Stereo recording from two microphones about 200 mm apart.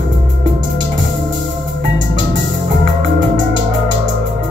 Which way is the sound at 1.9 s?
65° right (ahead or behind).